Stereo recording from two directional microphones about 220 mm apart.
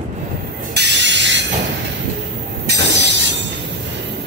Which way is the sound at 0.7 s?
50° right (ahead or behind).